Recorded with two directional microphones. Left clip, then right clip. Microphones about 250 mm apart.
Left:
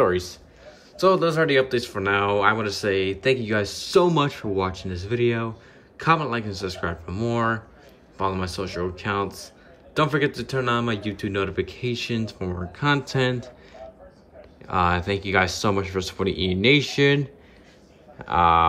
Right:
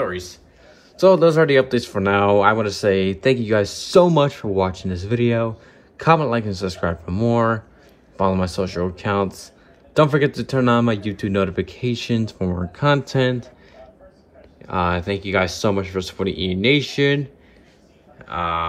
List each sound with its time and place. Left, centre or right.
0.0 s speech: centre
0.7 s speech: centre
14.6 s speech: centre
18.2 s speech: centre